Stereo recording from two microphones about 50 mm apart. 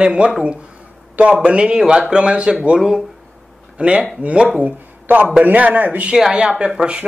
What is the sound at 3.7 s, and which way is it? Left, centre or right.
Speech, right.